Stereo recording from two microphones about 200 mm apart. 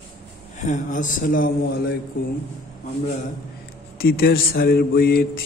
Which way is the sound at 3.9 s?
50° left (ahead or behind).